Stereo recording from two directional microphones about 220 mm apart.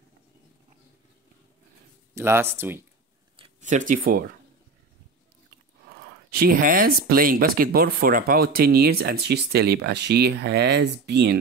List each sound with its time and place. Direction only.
2.1 s speech: 10° right (ahead or behind)
3.3 s speech: 30° right (ahead or behind)
6.3 s speech: 40° right (ahead or behind)